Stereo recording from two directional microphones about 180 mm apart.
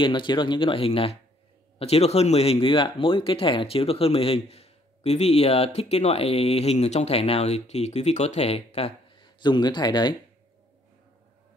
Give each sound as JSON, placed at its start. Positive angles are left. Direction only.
{"t": 0.0, "sound": "speech", "side_deg": 25}